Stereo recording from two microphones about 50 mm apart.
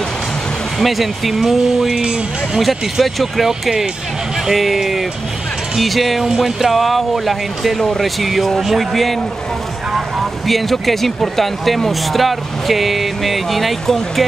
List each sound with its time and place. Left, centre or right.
0.7 s speech: centre
2.6 s speech: centre